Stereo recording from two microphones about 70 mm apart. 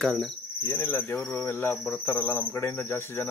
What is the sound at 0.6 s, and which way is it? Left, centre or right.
Speech, left.